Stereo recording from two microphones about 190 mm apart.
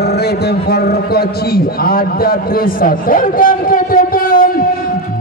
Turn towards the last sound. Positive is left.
turn(degrees=50)  # may be behind; listen again after turning